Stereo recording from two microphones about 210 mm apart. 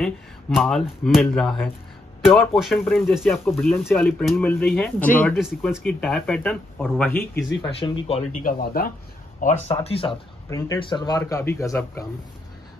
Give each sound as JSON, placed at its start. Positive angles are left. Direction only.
{"t": 0.0, "sound": "a man's voice", "side_deg": 0}
{"t": 5.4, "sound": "speech", "side_deg": 0}
{"t": 7.8, "sound": "speech", "side_deg": 20}
{"t": 8.3, "sound": "speech", "side_deg": 40}
{"t": 9.8, "sound": "a man's voice", "side_deg": 25}